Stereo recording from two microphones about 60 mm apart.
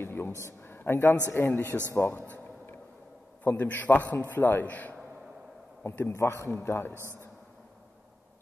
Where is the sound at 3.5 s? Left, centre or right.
Left.